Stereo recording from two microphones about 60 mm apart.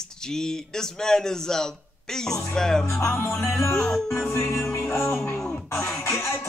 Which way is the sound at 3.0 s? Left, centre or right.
Left.